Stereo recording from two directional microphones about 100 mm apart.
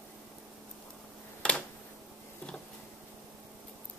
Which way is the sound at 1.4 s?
10° left (ahead or behind).